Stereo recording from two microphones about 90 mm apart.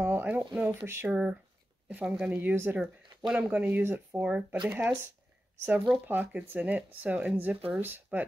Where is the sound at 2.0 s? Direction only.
5° right (ahead or behind).